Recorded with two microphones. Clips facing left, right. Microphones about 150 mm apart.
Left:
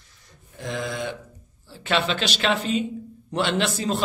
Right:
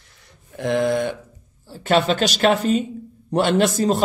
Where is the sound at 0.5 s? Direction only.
60° right (ahead or behind).